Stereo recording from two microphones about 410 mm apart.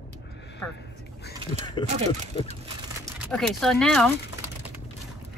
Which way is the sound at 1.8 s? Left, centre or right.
Centre.